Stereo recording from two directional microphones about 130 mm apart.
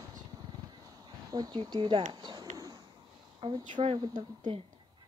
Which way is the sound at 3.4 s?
45° right (ahead or behind).